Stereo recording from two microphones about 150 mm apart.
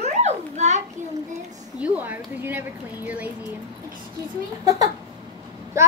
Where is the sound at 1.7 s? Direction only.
10° right (ahead or behind).